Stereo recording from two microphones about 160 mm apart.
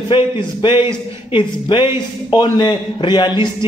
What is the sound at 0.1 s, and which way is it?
A man's voice, 30° left (ahead or behind).